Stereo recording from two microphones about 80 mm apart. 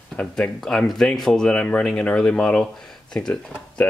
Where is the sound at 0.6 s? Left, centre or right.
Centre.